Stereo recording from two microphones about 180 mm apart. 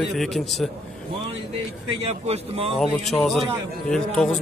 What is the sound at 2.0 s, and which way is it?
Speech, 35° right (ahead or behind).